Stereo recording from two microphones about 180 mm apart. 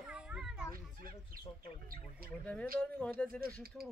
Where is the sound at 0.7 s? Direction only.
55° right (ahead or behind).